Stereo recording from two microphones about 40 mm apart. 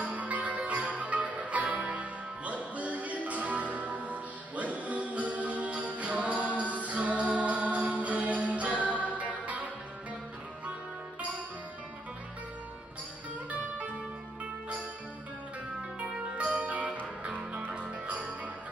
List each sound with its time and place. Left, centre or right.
0.0 s music: right
16.0 s music: right
16.6 s music: right